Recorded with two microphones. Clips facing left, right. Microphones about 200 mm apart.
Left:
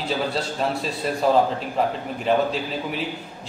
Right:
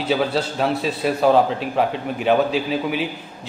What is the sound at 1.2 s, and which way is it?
Speech, 70° right (ahead or behind).